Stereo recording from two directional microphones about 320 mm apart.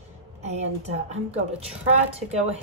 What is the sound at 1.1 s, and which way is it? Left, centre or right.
A woman's voice, centre.